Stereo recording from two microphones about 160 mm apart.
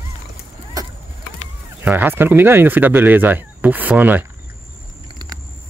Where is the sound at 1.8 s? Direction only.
10° right (ahead or behind).